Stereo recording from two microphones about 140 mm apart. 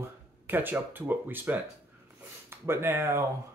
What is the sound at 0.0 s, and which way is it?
Speech, 15° right (ahead or behind).